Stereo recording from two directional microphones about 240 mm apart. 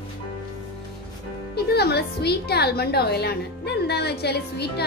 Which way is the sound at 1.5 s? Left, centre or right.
Left.